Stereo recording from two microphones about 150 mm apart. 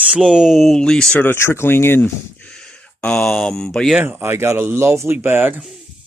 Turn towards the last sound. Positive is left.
turn(degrees=-15)  # may be behind; listen again after turning